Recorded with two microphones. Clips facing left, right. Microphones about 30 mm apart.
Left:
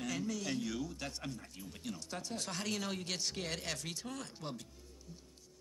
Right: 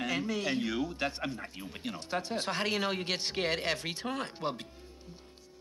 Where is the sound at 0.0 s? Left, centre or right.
Right.